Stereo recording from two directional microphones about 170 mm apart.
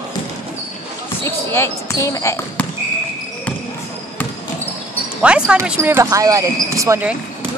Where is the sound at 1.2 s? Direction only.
15° left (ahead or behind).